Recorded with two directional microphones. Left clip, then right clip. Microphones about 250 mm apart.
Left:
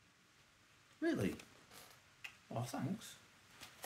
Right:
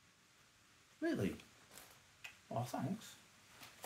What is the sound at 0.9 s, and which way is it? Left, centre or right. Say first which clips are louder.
Speech: left 1 dB; centre.